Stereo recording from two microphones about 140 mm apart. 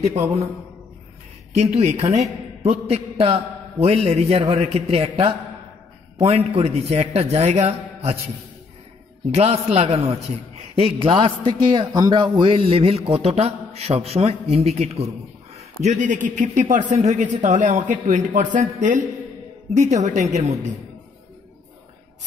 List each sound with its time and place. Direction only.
1.5 s a man's voice: 50° right (ahead or behind)
9.3 s a man's voice: 50° right (ahead or behind)